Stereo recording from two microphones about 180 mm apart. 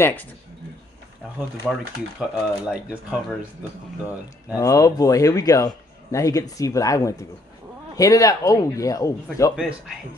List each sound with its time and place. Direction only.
0.0 s speech: 10° left (ahead or behind)
1.7 s speech: 5° right (ahead or behind)
4.6 s speech: 20° left (ahead or behind)
9.6 s speech: centre (ahead or behind)